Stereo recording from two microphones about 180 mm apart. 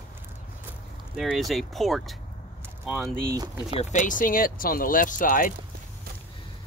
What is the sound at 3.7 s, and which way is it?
Speech, 45° left (ahead or behind).